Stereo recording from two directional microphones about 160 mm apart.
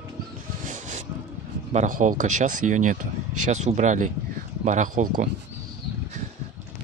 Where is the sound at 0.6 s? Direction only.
55° right (ahead or behind).